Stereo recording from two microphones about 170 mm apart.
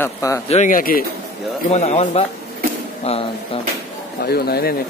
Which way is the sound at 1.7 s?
40° left (ahead or behind).